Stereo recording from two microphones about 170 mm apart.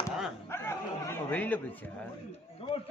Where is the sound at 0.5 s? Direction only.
15° left (ahead or behind).